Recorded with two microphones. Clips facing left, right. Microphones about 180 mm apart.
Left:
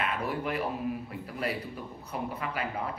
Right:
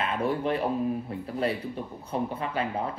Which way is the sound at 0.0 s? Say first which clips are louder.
Right 4 dB; 25° right (ahead or behind).